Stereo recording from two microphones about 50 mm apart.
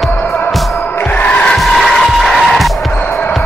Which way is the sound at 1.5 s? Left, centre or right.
Centre.